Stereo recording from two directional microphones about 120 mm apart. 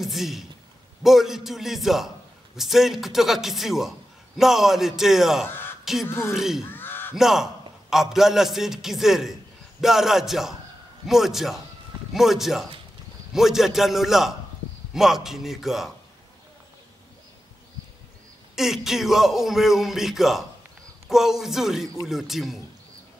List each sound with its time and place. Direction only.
0.0 s a man's voice: centre (ahead or behind)
5.5 s a sound: 20° left (ahead or behind)
6.0 s speech: 20° left (ahead or behind)
6.3 s a man's voice: 5° right (ahead or behind)
6.7 s crow: 15° left (ahead or behind)
7.2 s a man's voice: 5° right (ahead or behind)
18.6 s a man's voice: 5° right (ahead or behind)